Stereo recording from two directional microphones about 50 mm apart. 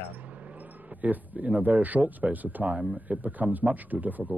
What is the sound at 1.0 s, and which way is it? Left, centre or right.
Speech, right.